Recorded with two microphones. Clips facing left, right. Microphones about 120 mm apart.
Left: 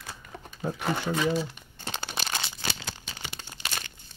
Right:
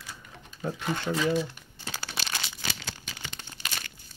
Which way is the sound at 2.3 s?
30° left (ahead or behind).